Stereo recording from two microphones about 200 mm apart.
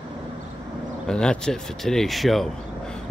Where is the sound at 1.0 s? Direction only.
5° left (ahead or behind).